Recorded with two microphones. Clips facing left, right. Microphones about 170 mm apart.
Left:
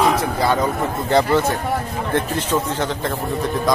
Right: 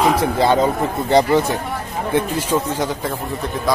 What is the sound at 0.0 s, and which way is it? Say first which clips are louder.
Speech: right 2 dB; 25° right (ahead or behind).